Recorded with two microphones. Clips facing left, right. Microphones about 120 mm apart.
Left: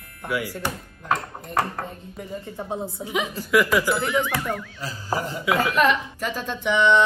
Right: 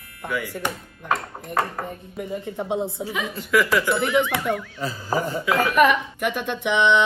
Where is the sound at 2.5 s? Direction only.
25° right (ahead or behind).